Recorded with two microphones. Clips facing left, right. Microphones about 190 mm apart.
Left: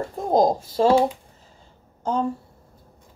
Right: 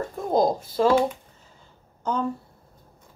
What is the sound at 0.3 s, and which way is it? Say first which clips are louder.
Speech: left 3 dB; 40° left (ahead or behind).